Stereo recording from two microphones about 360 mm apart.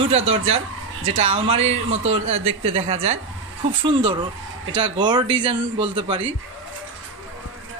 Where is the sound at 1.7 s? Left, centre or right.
Right.